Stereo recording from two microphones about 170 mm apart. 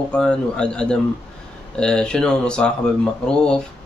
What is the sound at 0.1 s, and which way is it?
Speech, 5° left (ahead or behind).